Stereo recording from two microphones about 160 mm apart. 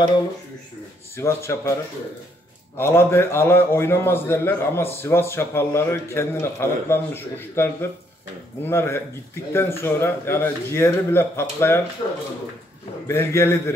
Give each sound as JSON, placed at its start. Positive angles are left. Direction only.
{"t": 1.1, "sound": "a man's voice", "side_deg": 15}
{"t": 2.8, "sound": "a man's voice", "side_deg": 15}
{"t": 13.0, "sound": "a man's voice", "side_deg": 15}